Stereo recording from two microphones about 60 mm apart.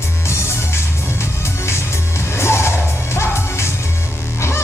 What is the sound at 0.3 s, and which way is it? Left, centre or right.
Music, left.